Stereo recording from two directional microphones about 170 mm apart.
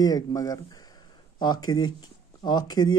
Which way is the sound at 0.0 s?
20° left (ahead or behind).